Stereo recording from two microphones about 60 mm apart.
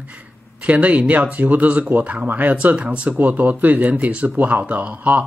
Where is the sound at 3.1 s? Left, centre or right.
Right.